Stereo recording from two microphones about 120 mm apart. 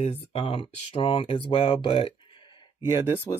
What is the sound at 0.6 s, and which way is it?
Speech, 50° left (ahead or behind).